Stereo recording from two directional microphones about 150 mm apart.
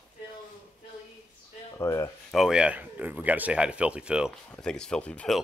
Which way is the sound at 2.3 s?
5° right (ahead or behind).